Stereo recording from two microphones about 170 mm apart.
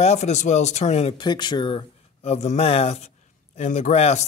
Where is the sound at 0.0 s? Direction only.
40° left (ahead or behind).